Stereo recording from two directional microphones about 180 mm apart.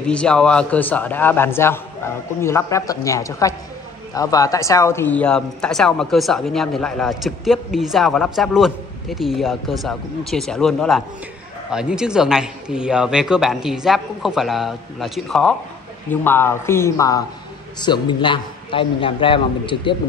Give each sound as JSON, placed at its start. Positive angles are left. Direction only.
{"t": 0.0, "sound": "a man's voice", "side_deg": 5}
{"t": 16.1, "sound": "a man's voice", "side_deg": 10}